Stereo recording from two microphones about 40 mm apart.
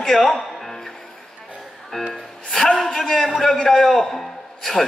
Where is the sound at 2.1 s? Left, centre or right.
Centre.